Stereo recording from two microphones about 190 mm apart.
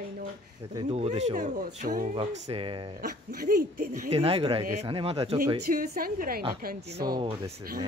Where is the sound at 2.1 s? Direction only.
30° right (ahead or behind).